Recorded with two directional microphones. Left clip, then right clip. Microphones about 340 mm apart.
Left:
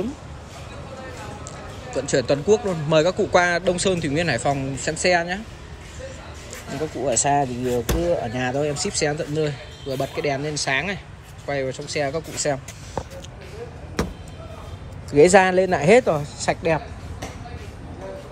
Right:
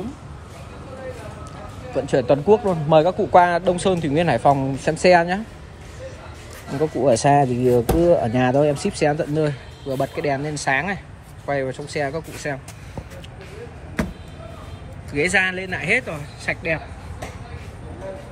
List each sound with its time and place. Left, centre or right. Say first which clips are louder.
2.0 s speech: right 3 dB; centre
7.1 s speech: right 5 dB; centre
7.5 s speech: right 6 dB; right
8.3 s speech: right 6 dB; centre
15.1 s speech: left 6 dB; centre